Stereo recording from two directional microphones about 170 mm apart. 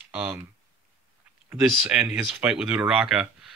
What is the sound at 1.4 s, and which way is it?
Speech, 5° right (ahead or behind).